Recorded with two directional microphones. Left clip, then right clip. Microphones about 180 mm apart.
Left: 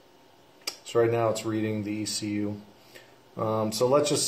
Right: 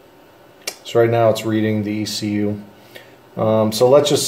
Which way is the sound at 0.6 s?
15° left (ahead or behind).